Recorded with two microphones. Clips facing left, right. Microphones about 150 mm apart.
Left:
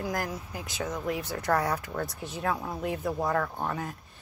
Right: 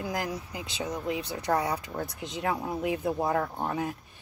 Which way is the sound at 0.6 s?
15° right (ahead or behind).